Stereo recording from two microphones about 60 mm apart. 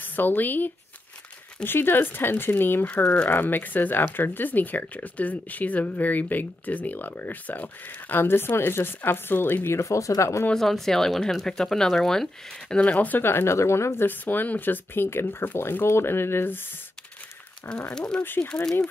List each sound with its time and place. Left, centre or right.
0.0 s speech: left
2.9 s speech: centre
3.3 s speech: left
9.8 s speech: left
10.5 s speech: centre; by 13.2 s left
13.2 s speech: left
14.0 s speech: left
17.6 s speech: centre
18.2 s speech: left
18.5 s speech: centre